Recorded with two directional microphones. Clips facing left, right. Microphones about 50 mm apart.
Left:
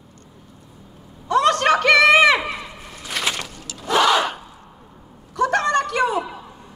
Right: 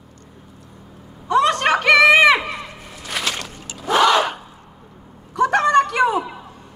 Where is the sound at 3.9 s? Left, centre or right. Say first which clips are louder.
Right 2 dB; centre.